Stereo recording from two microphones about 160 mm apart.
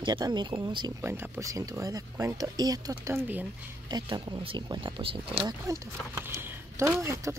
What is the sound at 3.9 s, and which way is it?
Speech, 30° right (ahead or behind).